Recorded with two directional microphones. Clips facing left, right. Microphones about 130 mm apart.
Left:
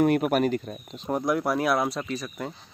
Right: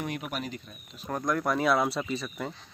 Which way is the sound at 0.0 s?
50° left (ahead or behind).